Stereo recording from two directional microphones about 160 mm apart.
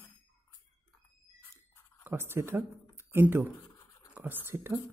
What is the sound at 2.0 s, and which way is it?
Speech, 15° right (ahead or behind).